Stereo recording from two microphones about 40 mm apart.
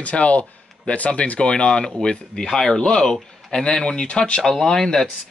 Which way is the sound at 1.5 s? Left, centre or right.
Left.